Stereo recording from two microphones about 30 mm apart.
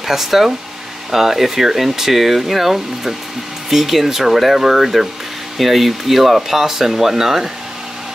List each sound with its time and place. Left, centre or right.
0.0 s speech: centre
5.6 s speech: centre